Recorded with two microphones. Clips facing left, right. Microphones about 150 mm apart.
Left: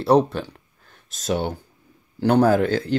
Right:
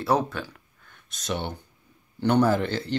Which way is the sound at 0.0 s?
30° left (ahead or behind).